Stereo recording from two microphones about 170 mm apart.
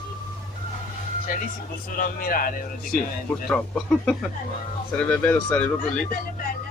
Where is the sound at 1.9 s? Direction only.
55° left (ahead or behind).